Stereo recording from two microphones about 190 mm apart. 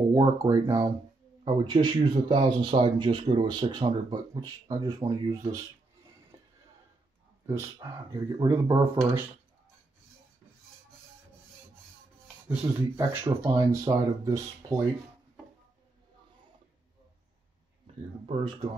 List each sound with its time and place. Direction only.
0.1 s speech: 15° right (ahead or behind)
7.4 s speech: 15° right (ahead or behind)
12.4 s speech: 15° right (ahead or behind)
18.2 s speech: 30° right (ahead or behind)